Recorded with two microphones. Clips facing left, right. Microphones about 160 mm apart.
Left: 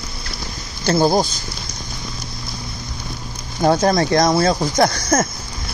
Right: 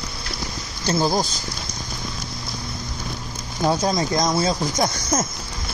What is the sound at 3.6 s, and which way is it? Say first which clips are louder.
Speech: left 5 dB; 60° left (ahead or behind).